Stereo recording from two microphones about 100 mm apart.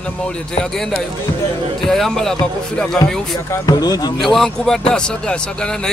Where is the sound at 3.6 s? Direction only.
40° left (ahead or behind).